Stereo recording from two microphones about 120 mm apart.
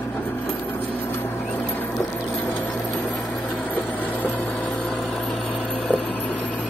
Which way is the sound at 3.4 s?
15° left (ahead or behind).